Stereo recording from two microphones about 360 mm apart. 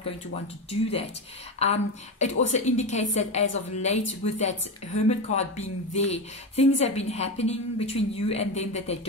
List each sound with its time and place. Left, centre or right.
1.6 s a woman's voice: centre